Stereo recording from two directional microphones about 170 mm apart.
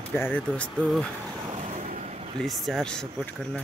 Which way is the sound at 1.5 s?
45° right (ahead or behind).